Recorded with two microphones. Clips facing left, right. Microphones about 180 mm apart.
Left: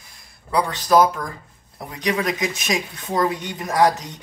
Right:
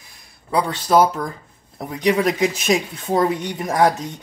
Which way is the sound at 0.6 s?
25° right (ahead or behind).